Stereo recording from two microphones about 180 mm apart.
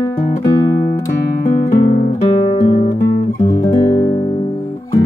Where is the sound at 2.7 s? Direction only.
40° left (ahead or behind).